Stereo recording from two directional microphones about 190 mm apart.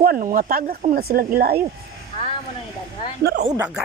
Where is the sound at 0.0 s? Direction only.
50° right (ahead or behind).